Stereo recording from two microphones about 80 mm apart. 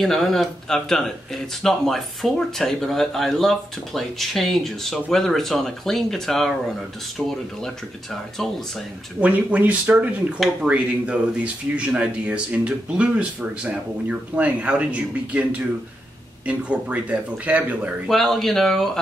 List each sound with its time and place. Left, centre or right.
0.0 s speech: centre
9.2 s speech: centre
18.0 s speech: centre